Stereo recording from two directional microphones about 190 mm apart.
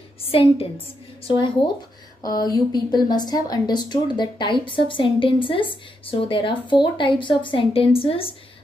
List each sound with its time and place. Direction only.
0.2 s a woman's voice: 30° left (ahead or behind)